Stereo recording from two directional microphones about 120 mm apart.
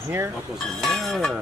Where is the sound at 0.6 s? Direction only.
Centre (ahead or behind).